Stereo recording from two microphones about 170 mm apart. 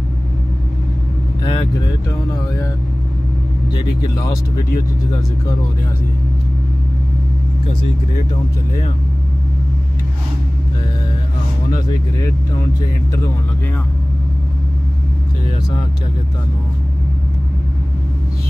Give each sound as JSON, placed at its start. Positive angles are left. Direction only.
{"t": 1.4, "sound": "vehicle", "side_deg": 30}
{"t": 4.0, "sound": "speech", "side_deg": 20}